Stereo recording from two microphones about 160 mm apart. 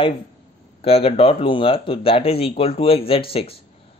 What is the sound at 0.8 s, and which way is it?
Speech, 35° left (ahead or behind).